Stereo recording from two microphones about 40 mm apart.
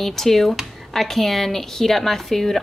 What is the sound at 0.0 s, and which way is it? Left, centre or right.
A woman's voice, centre.